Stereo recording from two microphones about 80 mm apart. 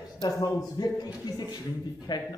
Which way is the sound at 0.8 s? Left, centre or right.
Left.